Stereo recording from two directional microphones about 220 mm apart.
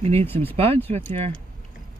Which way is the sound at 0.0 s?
30° right (ahead or behind).